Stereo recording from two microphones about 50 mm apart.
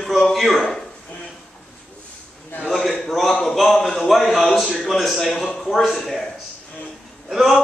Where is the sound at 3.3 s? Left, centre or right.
Centre.